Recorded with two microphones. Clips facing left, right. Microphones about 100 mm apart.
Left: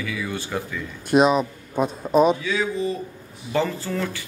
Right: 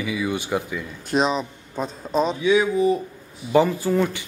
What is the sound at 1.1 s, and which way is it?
Speech, 5° left (ahead or behind).